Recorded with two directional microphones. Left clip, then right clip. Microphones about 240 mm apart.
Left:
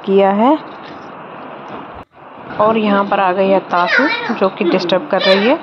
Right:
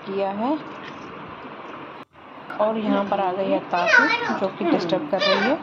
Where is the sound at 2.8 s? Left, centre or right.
Centre.